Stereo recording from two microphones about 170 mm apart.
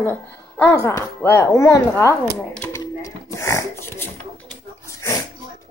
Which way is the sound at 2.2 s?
5° left (ahead or behind).